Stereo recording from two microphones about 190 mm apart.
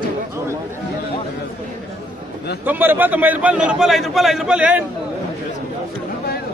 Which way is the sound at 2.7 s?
10° right (ahead or behind).